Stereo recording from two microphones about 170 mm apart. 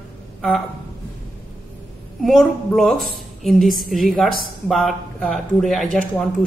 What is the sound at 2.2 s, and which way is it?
A woman's voice, centre (ahead or behind).